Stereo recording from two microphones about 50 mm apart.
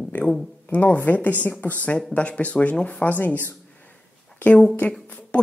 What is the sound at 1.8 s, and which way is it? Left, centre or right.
Speech, left.